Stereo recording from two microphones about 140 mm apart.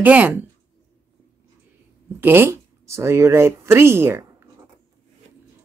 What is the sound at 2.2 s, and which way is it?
Speech, 15° right (ahead or behind).